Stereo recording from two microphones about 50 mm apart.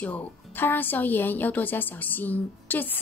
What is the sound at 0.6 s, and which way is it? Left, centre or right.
A woman's voice, left.